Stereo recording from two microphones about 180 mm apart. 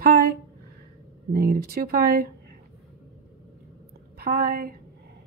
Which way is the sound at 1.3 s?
55° right (ahead or behind).